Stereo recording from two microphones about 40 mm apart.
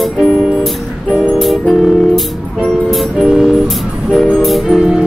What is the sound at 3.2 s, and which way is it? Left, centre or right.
Music, centre.